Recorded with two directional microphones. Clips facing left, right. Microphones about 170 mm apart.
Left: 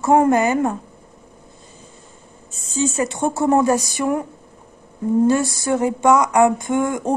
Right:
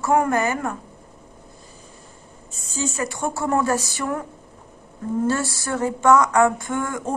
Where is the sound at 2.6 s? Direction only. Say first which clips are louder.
Left 6 dB; 20° left (ahead or behind).